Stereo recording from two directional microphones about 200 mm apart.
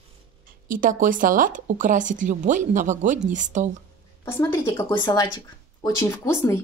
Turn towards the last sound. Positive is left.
turn(degrees=15)  # may be behind; listen again after turning